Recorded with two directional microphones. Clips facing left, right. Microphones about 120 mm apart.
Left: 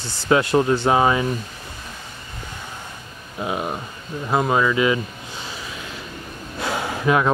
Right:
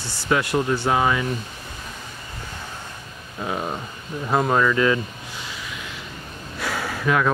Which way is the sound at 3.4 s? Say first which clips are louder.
Left 2 dB; 15° left (ahead or behind).